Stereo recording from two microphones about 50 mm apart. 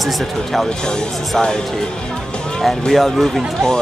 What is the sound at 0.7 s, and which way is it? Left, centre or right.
Speech, centre.